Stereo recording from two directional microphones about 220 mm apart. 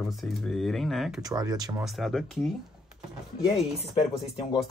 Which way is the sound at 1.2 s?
15° right (ahead or behind).